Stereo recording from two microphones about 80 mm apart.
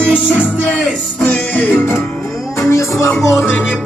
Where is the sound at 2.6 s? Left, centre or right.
Left.